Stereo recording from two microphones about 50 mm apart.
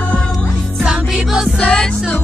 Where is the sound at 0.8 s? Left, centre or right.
Centre.